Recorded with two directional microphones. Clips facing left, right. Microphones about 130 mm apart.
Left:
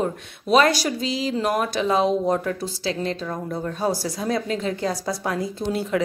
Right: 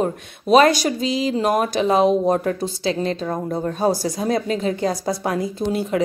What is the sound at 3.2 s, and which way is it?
Speech, 35° right (ahead or behind).